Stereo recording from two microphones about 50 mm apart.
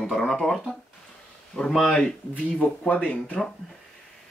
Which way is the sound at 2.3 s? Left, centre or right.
Left.